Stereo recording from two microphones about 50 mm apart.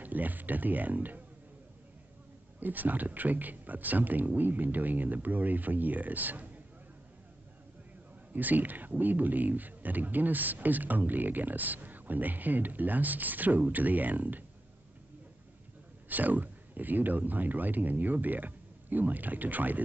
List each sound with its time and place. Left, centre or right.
0.0 s speech: right
2.6 s speech: right
8.3 s speech: right
16.1 s speech: right